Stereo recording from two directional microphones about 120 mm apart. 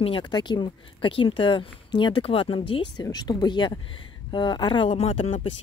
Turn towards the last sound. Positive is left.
turn(degrees=55)  # may be behind; listen again after turning